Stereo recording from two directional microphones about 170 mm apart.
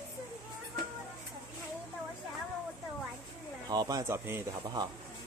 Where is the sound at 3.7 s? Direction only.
20° right (ahead or behind).